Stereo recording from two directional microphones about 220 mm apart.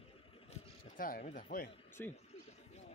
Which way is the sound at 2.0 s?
10° left (ahead or behind).